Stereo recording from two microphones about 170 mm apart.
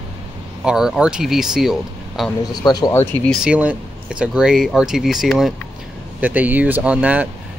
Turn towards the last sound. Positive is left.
turn(degrees=-10)  # may be behind; listen again after turning